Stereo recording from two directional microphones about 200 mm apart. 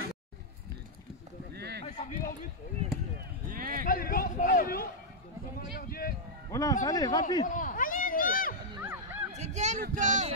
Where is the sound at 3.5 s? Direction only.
45° right (ahead or behind).